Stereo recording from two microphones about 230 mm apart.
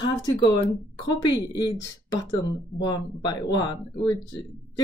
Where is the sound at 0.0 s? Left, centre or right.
Centre.